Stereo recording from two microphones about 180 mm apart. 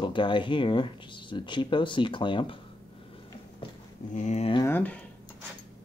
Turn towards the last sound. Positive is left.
turn(degrees=10)  # may be behind; listen again after turning